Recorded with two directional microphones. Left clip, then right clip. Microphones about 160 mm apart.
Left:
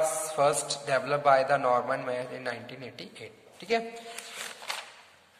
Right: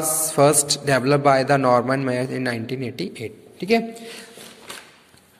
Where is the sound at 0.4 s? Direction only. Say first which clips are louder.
Right 9 dB; 40° right (ahead or behind).